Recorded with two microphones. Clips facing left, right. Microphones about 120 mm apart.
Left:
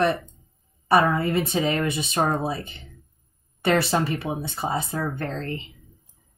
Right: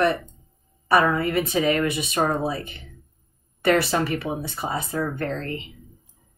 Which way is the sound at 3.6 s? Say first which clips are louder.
Right 1 dB; 25° left (ahead or behind).